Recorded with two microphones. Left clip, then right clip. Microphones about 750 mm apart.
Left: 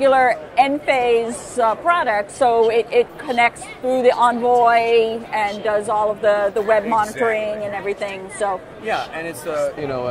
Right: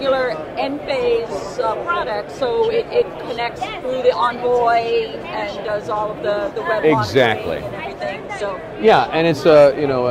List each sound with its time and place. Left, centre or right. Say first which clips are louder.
0.0 s a woman's voice: left 4 dB; left
8.8 s speech: right 12 dB; right
9.8 s speech: right 6 dB; centre